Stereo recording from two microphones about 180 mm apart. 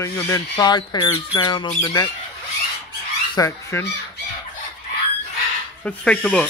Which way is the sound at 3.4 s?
15° left (ahead or behind).